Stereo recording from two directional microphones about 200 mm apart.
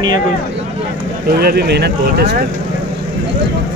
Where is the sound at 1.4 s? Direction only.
50° right (ahead or behind).